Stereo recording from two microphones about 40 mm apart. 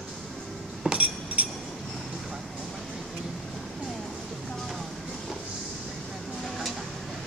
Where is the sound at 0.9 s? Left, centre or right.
Right.